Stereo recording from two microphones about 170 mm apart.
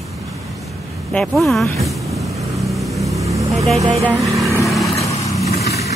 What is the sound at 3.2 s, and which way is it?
Vehicle, 20° right (ahead or behind).